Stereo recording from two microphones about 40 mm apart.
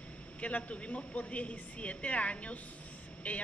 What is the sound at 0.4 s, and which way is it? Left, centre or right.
Speech, left.